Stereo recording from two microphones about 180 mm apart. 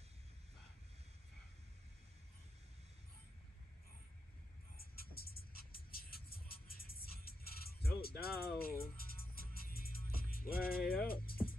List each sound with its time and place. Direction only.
4.7 s music: 55° left (ahead or behind)